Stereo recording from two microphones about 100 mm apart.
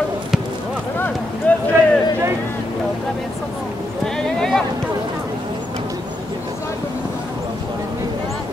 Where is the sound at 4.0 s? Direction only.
5° left (ahead or behind).